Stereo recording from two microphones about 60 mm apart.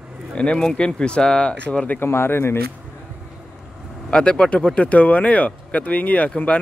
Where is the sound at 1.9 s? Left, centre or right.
Left.